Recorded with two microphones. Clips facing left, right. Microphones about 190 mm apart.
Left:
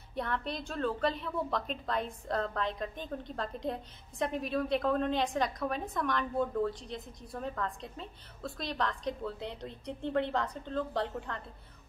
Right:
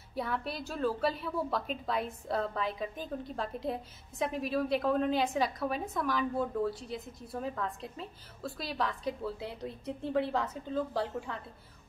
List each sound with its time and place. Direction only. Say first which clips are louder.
0.1 s a woman's voice: even; 5° right (ahead or behind)